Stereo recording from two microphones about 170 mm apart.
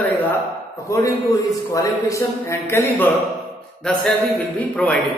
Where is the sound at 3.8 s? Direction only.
5° left (ahead or behind).